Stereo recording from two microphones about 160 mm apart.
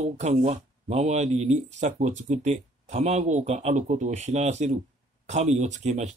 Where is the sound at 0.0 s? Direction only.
45° right (ahead or behind).